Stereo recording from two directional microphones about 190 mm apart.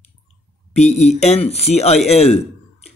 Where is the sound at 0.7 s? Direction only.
35° left (ahead or behind).